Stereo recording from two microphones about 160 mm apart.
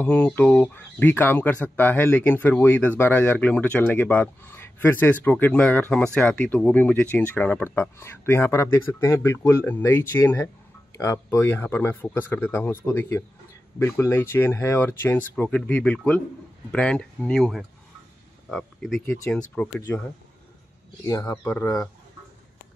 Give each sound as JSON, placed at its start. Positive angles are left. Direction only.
{"t": 0.0, "sound": "speech", "side_deg": 10}
{"t": 21.1, "sound": "speech", "side_deg": 20}